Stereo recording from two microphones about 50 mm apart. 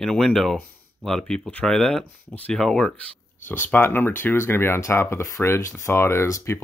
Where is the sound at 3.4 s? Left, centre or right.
Left.